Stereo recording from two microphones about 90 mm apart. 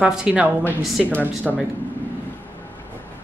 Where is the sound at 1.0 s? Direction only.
15° left (ahead or behind).